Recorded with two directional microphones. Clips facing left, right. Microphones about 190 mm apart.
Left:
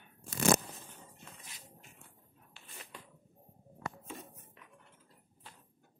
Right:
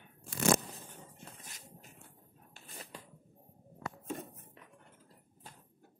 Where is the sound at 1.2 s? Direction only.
40° right (ahead or behind).